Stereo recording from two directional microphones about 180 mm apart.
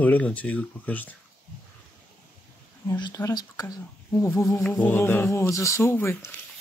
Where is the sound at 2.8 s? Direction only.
20° left (ahead or behind).